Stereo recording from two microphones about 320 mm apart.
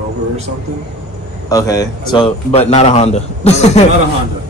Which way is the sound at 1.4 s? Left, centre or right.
Centre.